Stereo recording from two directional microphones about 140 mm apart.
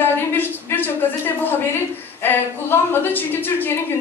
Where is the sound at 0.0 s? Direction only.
15° left (ahead or behind).